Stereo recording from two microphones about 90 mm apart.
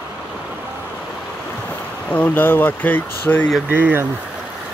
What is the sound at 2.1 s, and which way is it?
Speech, 20° left (ahead or behind).